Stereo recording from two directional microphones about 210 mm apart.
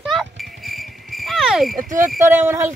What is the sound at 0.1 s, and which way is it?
Music, centre (ahead or behind).